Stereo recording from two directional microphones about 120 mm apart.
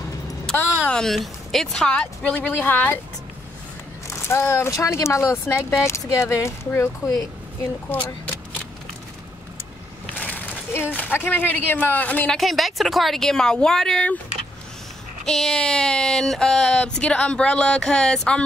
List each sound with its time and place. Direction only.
0.6 s speech: 10° left (ahead or behind)
4.3 s speech: 20° left (ahead or behind)
10.1 s speech: 15° left (ahead or behind)
12.4 s speech: centre (ahead or behind)
15.2 s speech: 5° left (ahead or behind)